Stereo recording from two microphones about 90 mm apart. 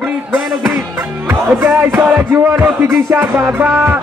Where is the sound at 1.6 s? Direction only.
25° right (ahead or behind).